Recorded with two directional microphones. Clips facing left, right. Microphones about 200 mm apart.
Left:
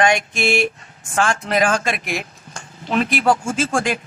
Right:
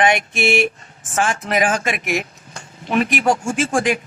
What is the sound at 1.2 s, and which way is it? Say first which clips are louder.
Speech: left 1 dB; 15° right (ahead or behind).